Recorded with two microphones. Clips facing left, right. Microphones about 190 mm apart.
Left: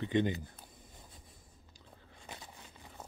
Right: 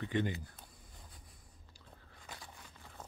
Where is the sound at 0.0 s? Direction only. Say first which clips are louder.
Left 4 dB; 20° left (ahead or behind).